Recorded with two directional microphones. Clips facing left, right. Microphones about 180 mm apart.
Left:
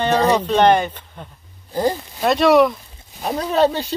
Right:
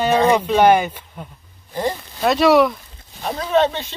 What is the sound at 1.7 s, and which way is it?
Speech, 35° left (ahead or behind).